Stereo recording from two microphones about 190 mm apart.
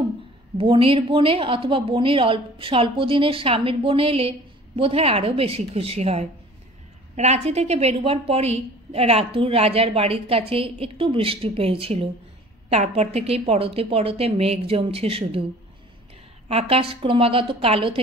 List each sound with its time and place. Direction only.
0.6 s a woman's voice: 30° right (ahead or behind)
16.4 s a woman's voice: 30° right (ahead or behind)